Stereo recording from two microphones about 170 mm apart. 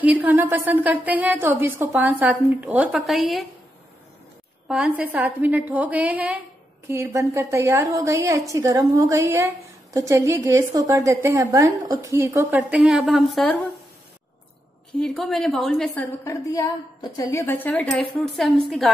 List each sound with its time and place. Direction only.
0.0 s a woman's voice: 10° right (ahead or behind)
4.6 s a woman's voice: 5° right (ahead or behind)
15.0 s a woman's voice: centre (ahead or behind)